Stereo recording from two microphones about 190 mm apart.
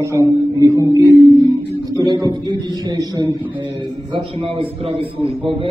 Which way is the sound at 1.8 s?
20° right (ahead or behind).